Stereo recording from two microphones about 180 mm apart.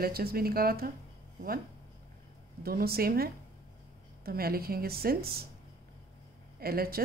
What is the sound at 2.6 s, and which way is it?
Speech, 60° right (ahead or behind).